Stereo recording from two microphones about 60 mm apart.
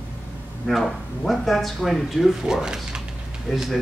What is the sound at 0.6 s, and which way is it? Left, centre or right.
Speech, centre.